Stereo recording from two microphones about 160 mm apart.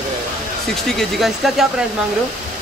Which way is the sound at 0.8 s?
Centre (ahead or behind).